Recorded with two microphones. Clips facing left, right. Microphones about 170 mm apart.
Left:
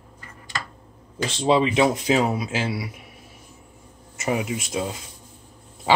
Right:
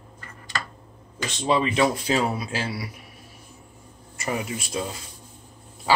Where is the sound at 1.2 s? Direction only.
25° left (ahead or behind).